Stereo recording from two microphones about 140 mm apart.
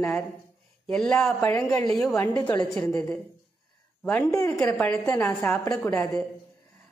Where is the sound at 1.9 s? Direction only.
Centre (ahead or behind).